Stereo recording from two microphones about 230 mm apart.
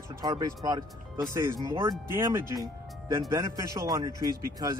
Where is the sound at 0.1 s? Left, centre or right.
Centre.